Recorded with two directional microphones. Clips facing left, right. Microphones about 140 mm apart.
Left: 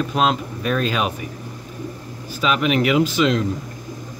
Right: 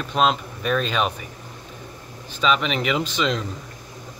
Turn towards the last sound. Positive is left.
turn(degrees=5)  # may be behind; listen again after turning